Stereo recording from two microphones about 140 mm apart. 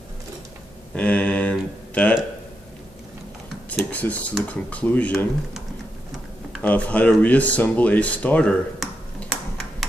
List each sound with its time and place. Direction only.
0.9 s a sound: 10° left (ahead or behind)
3.7 s speech: 10° left (ahead or behind)
6.6 s speech: 10° left (ahead or behind)